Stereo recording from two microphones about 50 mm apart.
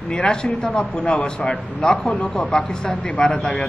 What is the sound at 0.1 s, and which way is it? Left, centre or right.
A man's voice, centre.